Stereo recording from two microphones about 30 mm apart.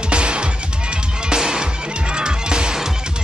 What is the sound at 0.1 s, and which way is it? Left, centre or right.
Music, right.